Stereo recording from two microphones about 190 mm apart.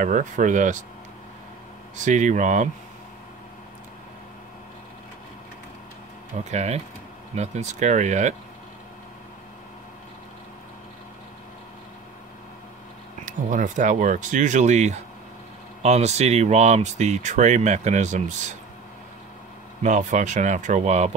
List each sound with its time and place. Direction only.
0.0 s speech: 40° right (ahead or behind)
2.0 s speech: 40° right (ahead or behind)
6.5 s speech: 35° right (ahead or behind)
13.2 s speech: 40° right (ahead or behind)
19.8 s speech: 40° right (ahead or behind)